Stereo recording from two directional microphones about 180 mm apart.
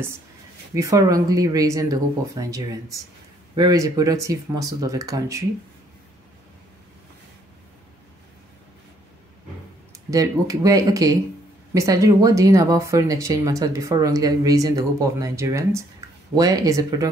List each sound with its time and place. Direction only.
0.7 s speech: 20° right (ahead or behind)
10.1 s speech: 20° right (ahead or behind)
16.0 s a sound: 15° right (ahead or behind)
16.3 s speech: 20° right (ahead or behind)